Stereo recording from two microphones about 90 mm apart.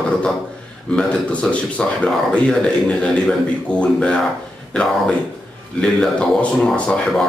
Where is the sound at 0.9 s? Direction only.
10° left (ahead or behind).